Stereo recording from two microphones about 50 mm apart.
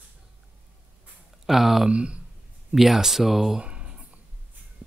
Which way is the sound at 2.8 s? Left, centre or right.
Centre.